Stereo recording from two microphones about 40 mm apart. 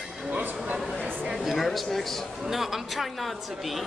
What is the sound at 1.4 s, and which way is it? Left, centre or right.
Speech, centre.